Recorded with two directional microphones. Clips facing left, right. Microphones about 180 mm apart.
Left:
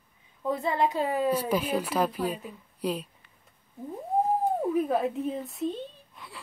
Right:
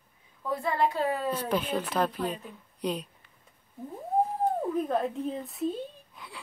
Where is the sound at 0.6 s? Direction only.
20° left (ahead or behind).